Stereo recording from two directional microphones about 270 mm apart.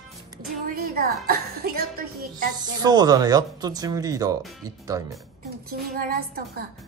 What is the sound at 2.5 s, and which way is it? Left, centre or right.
Speech, centre.